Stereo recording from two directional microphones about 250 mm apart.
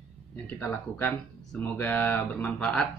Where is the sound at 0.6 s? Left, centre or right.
Centre.